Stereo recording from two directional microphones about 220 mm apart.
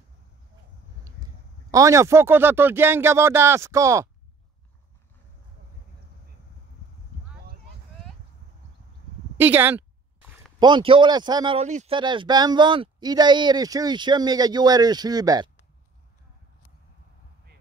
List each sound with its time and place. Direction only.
1.7 s speech: 15° right (ahead or behind)
9.4 s speech: 10° right (ahead or behind)
10.6 s speech: 20° right (ahead or behind)